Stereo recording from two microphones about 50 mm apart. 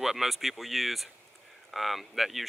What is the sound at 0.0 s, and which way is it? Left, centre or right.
Speech, centre.